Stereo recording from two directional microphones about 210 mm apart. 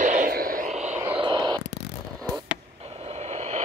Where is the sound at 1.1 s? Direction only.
20° right (ahead or behind).